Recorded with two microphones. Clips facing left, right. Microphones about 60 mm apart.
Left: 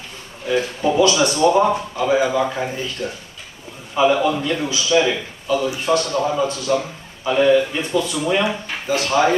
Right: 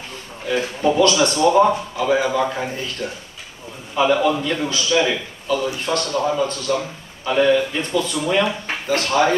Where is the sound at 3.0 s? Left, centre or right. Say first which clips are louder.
Left 1 dB; right.